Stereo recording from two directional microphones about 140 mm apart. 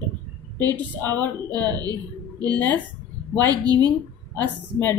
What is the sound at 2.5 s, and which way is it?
Speech, 15° left (ahead or behind).